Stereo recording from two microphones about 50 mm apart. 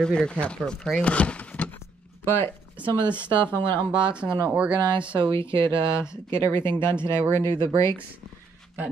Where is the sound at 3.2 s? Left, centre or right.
Left.